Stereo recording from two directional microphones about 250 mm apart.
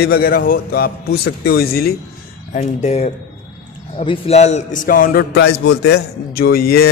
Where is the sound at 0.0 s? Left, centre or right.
Left.